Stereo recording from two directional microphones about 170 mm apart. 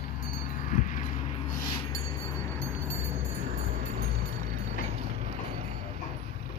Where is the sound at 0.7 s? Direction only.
50° left (ahead or behind).